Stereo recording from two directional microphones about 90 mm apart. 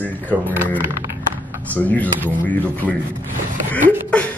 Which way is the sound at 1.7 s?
20° left (ahead or behind).